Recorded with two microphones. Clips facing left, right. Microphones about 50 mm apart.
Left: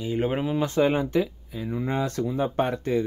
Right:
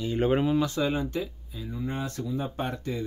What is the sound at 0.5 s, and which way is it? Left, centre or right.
Speech, left.